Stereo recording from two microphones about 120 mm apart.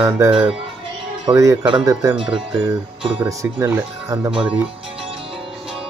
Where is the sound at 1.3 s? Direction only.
25° right (ahead or behind).